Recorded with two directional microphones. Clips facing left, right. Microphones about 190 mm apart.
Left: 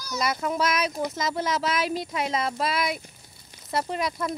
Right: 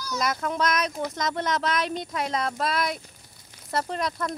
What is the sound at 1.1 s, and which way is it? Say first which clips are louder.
Speech: even; 5° left (ahead or behind).